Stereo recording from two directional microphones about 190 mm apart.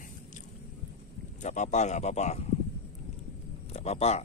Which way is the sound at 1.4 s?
40° left (ahead or behind).